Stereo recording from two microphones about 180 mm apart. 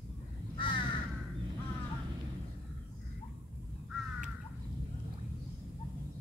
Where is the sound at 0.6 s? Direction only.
30° left (ahead or behind).